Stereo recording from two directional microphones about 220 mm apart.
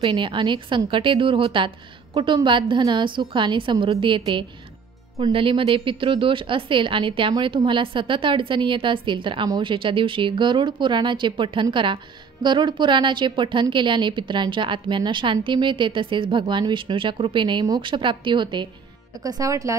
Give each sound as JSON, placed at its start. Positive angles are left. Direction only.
{"t": 0.0, "sound": "speech", "side_deg": -20}